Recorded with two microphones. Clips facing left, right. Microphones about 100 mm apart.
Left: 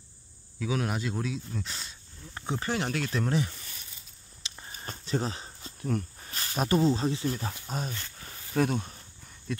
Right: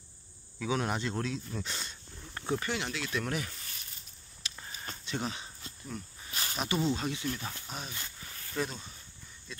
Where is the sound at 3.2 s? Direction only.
30° left (ahead or behind).